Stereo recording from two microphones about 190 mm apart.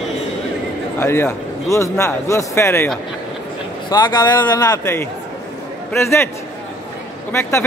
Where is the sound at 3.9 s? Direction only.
20° left (ahead or behind).